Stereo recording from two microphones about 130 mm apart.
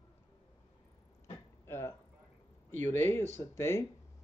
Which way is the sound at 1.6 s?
20° left (ahead or behind).